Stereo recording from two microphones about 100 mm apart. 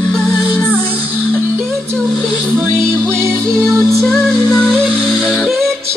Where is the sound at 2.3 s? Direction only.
15° right (ahead or behind).